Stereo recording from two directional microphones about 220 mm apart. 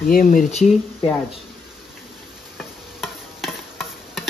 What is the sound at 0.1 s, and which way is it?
Speech, 40° left (ahead or behind).